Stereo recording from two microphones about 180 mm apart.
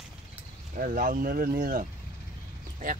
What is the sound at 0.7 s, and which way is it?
Speech, 50° right (ahead or behind).